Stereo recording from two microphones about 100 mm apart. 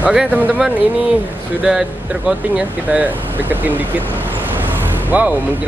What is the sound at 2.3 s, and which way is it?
Speech, 10° right (ahead or behind).